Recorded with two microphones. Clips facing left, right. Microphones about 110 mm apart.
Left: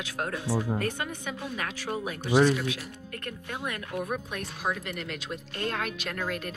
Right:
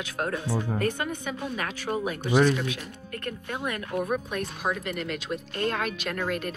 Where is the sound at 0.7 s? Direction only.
50° right (ahead or behind).